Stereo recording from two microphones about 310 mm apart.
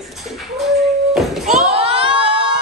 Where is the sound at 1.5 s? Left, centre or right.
Centre.